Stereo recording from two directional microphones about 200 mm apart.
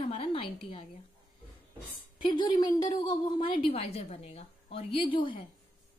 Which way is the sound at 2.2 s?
25° left (ahead or behind).